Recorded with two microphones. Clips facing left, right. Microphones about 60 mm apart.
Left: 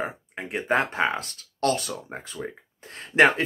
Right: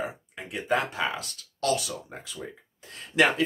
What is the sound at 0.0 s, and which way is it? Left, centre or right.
Speech, left.